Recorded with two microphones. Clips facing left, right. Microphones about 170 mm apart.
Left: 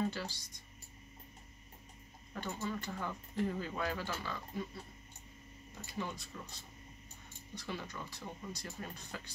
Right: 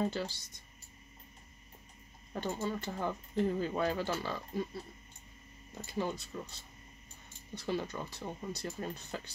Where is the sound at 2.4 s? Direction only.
30° right (ahead or behind).